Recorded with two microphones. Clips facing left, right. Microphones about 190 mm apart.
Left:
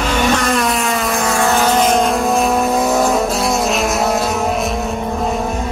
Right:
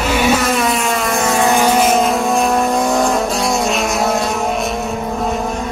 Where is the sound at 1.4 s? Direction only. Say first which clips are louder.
Right 1 dB; 10° right (ahead or behind).